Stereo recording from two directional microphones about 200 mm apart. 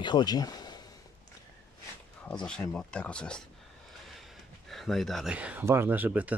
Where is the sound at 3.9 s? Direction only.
Centre (ahead or behind).